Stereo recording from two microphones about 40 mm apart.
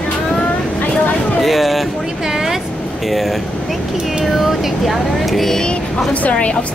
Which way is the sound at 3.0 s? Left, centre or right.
Centre.